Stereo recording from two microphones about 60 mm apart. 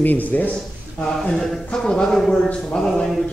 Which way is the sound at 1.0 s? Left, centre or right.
Centre.